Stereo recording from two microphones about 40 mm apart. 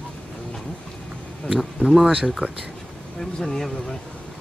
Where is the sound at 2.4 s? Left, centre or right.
Right.